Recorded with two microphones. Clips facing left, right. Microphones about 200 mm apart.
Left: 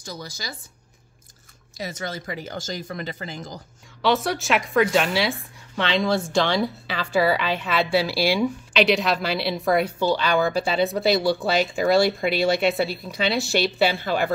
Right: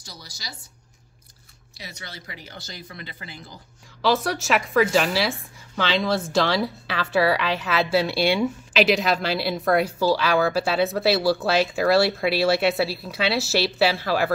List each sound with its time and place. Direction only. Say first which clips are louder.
0.0 s speech: left 8 dB; 55° left (ahead or behind)
1.8 s speech: left 10 dB; 45° left (ahead or behind)
4.0 s speech: even; centre (ahead or behind)